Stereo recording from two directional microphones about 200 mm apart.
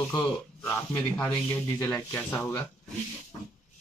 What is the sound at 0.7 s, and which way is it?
Speech, 10° left (ahead or behind).